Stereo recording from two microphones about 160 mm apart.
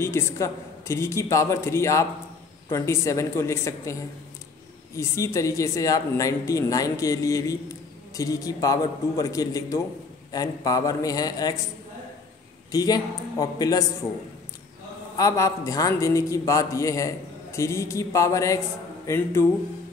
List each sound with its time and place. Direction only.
0.0 s a man's voice: 15° left (ahead or behind)
4.9 s a man's voice: 20° left (ahead or behind)
12.7 s a man's voice: 25° left (ahead or behind)
15.1 s a man's voice: 20° left (ahead or behind)